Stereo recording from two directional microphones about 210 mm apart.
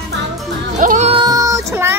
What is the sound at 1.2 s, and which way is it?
Child singing, 15° right (ahead or behind).